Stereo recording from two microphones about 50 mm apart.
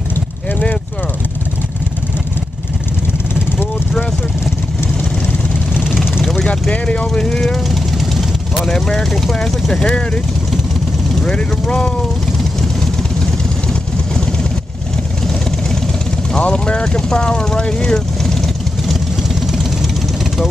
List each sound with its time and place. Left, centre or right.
6.7 s vehicle: left
7.1 s vehicle: centre
7.6 s vehicle: centre
11.1 s vehicle: centre
16.3 s speech: centre